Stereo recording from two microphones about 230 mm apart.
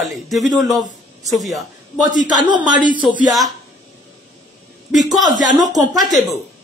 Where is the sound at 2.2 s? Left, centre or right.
Left.